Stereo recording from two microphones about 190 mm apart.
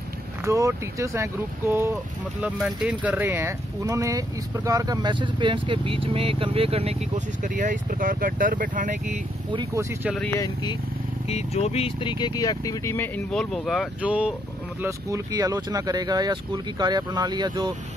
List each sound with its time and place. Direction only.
0.5 s speech: 15° right (ahead or behind); by 7.0 s 30° right (ahead or behind)
7.4 s speech: 45° right (ahead or behind)
9.5 s speech: 25° right (ahead or behind)
10.1 s speech: 5° left (ahead or behind)
10.4 s speech: 25° left (ahead or behind)
11.2 s speech: 35° left (ahead or behind); by 17.7 s 20° right (ahead or behind)